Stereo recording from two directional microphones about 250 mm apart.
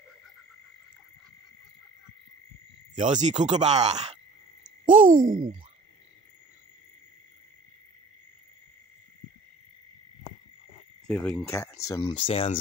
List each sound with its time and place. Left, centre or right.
3.0 s speech: right
4.8 s a sound: right
11.1 s speech: centre; by 12.5 s left